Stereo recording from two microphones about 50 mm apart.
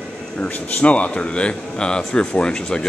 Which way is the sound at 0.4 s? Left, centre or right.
Left.